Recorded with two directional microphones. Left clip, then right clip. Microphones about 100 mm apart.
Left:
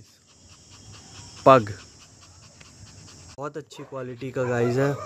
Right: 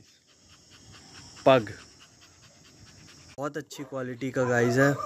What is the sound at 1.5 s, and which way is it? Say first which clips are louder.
Speech: left 5 dB; 50° left (ahead or behind).